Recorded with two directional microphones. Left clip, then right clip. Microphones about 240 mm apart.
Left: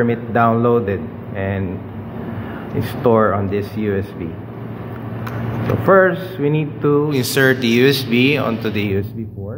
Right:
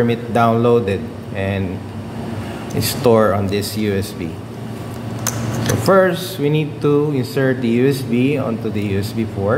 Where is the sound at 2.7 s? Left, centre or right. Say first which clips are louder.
Right 1 dB; centre.